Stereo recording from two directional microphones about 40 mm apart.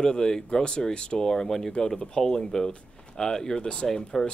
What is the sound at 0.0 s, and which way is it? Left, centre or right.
Speech, centre.